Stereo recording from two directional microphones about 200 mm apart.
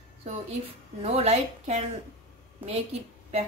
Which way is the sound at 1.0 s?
35° right (ahead or behind).